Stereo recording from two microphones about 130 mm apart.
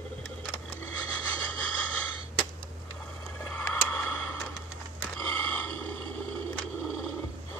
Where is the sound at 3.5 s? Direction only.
10° left (ahead or behind).